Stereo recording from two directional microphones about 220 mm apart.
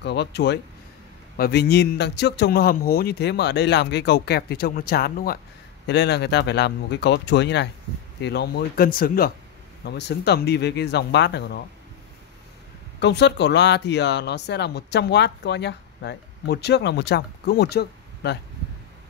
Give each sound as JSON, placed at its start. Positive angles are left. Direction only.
{"t": 0.0, "sound": "speech", "side_deg": 50}
{"t": 13.0, "sound": "speech", "side_deg": 50}